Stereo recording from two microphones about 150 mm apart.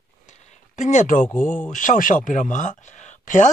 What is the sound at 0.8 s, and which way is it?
Speech, 55° left (ahead or behind).